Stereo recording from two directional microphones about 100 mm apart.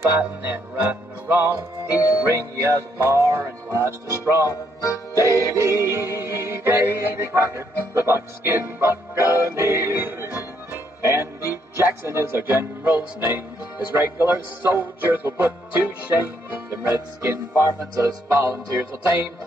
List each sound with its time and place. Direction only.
0.2 s music: 20° right (ahead or behind)
4.5 s speech: 35° left (ahead or behind)
5.4 s music: 30° right (ahead or behind)